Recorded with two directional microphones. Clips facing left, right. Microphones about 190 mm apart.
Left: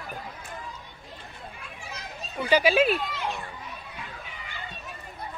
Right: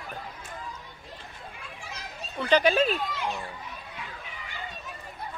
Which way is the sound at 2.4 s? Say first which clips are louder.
Left 1 dB; 10° left (ahead or behind).